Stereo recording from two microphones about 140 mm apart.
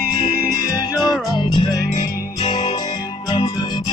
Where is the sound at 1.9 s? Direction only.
60° left (ahead or behind).